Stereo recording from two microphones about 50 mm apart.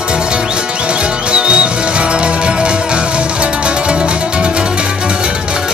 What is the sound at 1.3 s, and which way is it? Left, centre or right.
Music, right.